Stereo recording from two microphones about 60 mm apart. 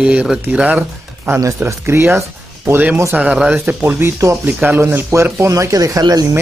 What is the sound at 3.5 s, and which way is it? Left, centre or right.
Speech, right.